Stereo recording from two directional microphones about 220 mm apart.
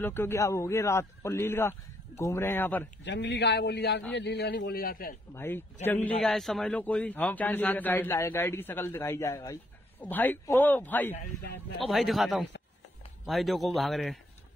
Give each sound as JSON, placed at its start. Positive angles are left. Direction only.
{"t": 0.0, "sound": "a man's voice", "side_deg": 10}
{"t": 3.1, "sound": "a man's voice", "side_deg": 55}
{"t": 5.3, "sound": "a man's voice", "side_deg": 10}